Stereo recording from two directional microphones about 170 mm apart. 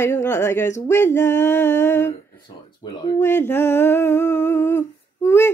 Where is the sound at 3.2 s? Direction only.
15° left (ahead or behind).